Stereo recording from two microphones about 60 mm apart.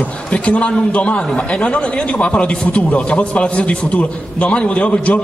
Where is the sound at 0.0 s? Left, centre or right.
Left.